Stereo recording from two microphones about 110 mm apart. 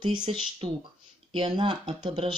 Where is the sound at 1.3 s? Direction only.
45° right (ahead or behind).